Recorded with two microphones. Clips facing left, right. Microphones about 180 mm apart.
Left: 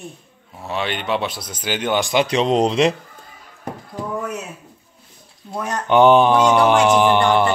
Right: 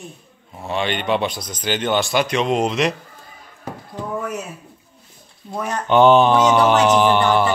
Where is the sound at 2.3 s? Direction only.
35° left (ahead or behind).